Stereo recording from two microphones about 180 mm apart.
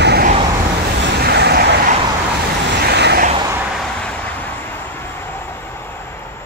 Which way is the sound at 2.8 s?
65° right (ahead or behind).